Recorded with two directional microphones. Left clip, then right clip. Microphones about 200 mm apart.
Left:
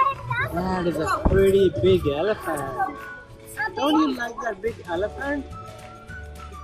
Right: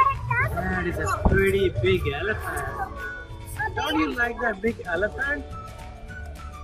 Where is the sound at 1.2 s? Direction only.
25° right (ahead or behind).